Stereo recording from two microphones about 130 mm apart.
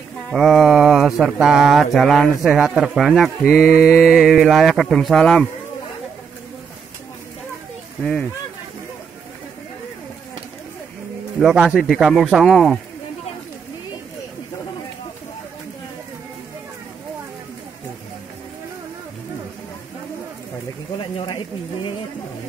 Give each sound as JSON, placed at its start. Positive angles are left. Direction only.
{"t": 0.3, "sound": "mantra", "side_deg": 0}
{"t": 3.8, "sound": "music", "side_deg": 15}
{"t": 4.1, "sound": "mantra", "side_deg": -5}
{"t": 8.0, "sound": "music", "side_deg": 10}
{"t": 11.3, "sound": "mantra", "side_deg": -5}
{"t": 21.0, "sound": "a sound", "side_deg": 40}